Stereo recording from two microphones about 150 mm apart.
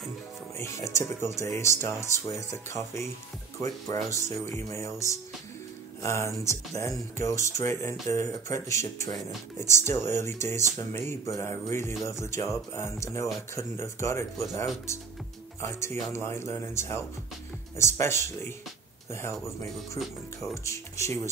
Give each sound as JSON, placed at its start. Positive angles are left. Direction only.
{"t": 0.6, "sound": "speech", "side_deg": 20}
{"t": 15.6, "sound": "speech", "side_deg": 20}